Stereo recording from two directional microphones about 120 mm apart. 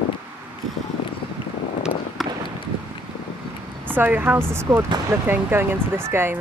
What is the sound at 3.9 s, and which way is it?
Speech, 15° right (ahead or behind).